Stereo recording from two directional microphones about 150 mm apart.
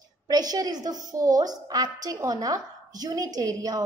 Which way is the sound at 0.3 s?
25° right (ahead or behind).